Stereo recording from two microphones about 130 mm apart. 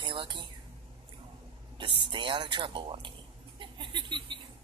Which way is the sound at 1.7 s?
40° right (ahead or behind).